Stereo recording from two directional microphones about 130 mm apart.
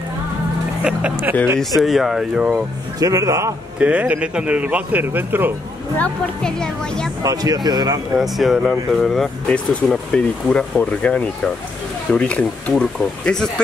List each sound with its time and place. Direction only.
0.8 s speech: 10° right (ahead or behind)
3.0 s a man's voice: 25° right (ahead or behind)
3.8 s speech: 10° right (ahead or behind)
5.9 s speech: 5° left (ahead or behind)
7.2 s speech: 30° right (ahead or behind)
8.2 s speech: centre (ahead or behind)